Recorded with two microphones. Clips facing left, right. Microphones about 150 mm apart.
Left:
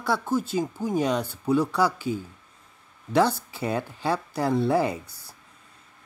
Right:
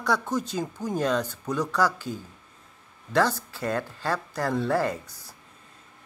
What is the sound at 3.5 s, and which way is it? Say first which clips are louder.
Speech: left 1 dB; 10° left (ahead or behind).